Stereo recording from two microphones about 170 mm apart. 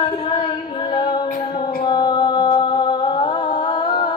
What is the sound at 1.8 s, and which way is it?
Music, 25° left (ahead or behind).